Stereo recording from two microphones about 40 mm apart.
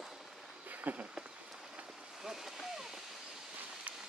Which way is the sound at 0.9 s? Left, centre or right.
Right.